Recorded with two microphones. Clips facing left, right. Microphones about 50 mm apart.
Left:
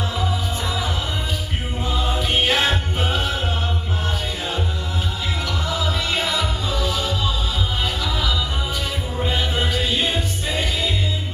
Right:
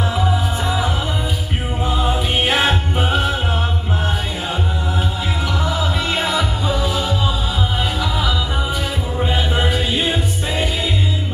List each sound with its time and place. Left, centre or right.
0.1 s music: centre
5.7 s music: centre
9.2 s music: centre